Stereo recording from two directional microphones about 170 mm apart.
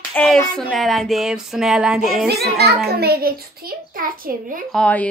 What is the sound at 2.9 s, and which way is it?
A child's voice, 65° right (ahead or behind).